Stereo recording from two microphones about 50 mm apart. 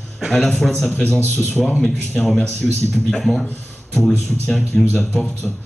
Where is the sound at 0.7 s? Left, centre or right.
Centre.